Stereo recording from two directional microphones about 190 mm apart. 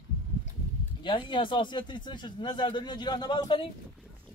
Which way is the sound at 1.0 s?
25° left (ahead or behind).